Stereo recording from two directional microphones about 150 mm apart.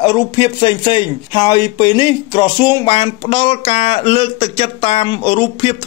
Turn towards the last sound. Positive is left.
turn(degrees=35)  # may be behind; listen again after turning